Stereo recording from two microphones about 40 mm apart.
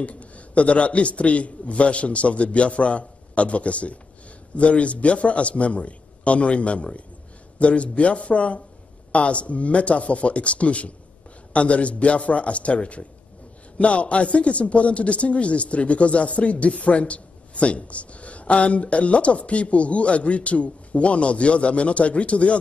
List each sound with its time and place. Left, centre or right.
0.0 s a man's voice: left